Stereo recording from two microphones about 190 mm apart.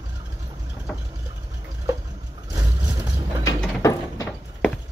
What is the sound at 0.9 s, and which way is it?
Engine, 5° left (ahead or behind).